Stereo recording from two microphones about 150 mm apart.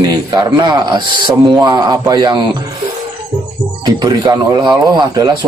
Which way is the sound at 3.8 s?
30° right (ahead or behind).